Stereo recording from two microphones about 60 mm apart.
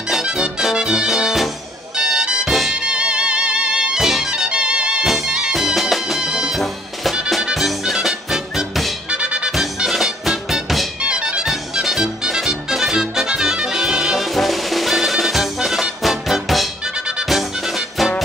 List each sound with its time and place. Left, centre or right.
0.1 s music: centre
2.5 s music: centre
2.8 s music: centre
4.3 s music: centre
5.0 s music: centre
6.6 s music: centre
9.1 s music: centre
9.5 s music: centre
11.0 s music: centre